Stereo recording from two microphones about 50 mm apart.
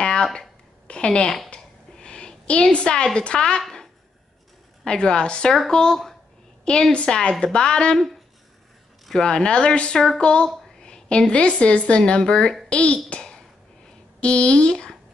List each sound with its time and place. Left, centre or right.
0.0 s a sound: centre
3.2 s a woman's voice: centre
4.8 s a woman's voice: centre
9.2 s a woman's voice: centre